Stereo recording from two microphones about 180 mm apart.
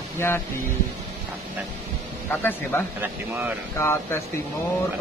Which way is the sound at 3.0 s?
10° right (ahead or behind).